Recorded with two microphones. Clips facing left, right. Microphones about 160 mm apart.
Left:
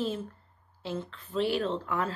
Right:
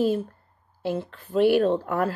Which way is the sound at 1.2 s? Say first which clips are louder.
Right 10 dB; 55° right (ahead or behind).